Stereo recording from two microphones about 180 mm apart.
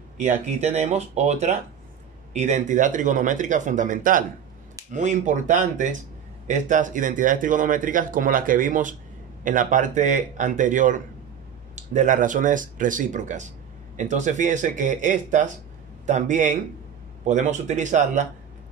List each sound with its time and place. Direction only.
0.2 s speech: 40° right (ahead or behind)